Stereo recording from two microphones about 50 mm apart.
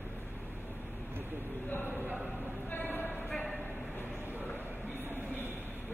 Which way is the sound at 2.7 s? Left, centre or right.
Left.